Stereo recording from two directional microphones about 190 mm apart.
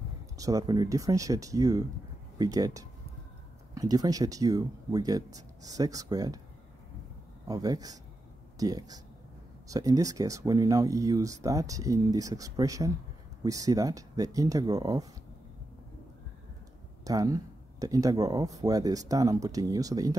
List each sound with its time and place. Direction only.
0.4 s speech: 20° right (ahead or behind)
7.4 s speech: 20° right (ahead or behind)
17.0 s speech: 20° right (ahead or behind)